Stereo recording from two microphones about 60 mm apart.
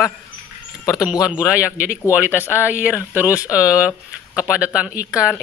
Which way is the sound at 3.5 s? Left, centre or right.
Centre.